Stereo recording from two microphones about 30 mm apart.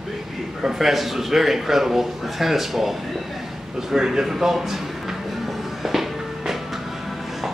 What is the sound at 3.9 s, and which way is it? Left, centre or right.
Speech, centre.